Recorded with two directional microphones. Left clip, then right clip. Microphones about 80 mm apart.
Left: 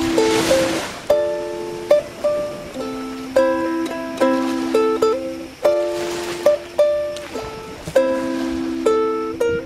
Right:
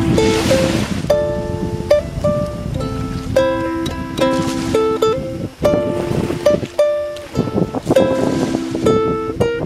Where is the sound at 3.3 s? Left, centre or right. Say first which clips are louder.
Right 1 dB; centre.